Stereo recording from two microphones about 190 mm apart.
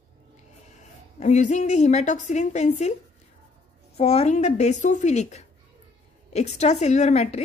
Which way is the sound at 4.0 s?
35° left (ahead or behind).